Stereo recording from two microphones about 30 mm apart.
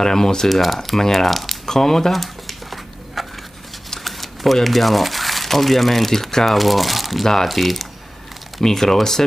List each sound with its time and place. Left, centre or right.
0.0 s speech: centre
0.5 s speech: centre
0.9 s speech: centre
1.7 s speech: centre
2.1 s a sound: centre
4.6 s speech: centre